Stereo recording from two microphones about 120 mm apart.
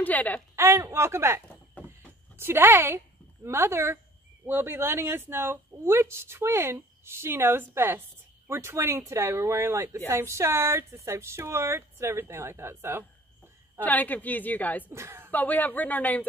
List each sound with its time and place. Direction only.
0.0 s a woman's voice: 15° left (ahead or behind)
0.6 s speech: 20° right (ahead or behind)
13.7 s a woman's voice: 15° left (ahead or behind)
14.9 s speech: 20° right (ahead or behind)
15.3 s a woman's voice: 15° left (ahead or behind)